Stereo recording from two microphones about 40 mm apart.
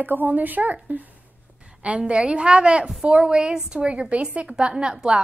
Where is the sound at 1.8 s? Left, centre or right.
Right.